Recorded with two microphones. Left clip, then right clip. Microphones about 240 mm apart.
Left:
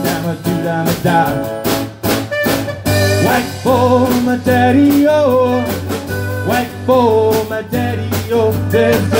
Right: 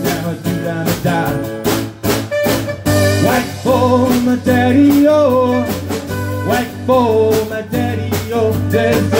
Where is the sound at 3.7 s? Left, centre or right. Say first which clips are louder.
Left 1 dB; left.